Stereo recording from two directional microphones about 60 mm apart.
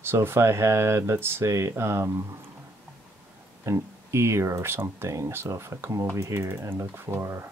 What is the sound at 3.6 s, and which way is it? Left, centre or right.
Speech, right.